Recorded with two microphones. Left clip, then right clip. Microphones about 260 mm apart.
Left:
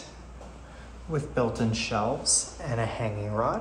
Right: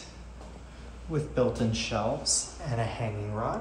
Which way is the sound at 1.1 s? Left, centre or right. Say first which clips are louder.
Even; left.